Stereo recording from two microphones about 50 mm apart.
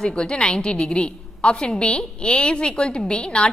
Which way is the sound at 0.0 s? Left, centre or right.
Centre.